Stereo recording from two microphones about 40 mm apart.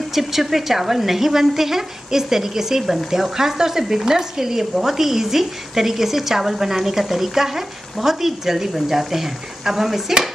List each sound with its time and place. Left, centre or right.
0.1 s stir: centre